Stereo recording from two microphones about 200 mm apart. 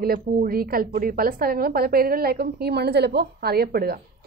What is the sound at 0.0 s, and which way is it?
A woman's voice, 45° right (ahead or behind).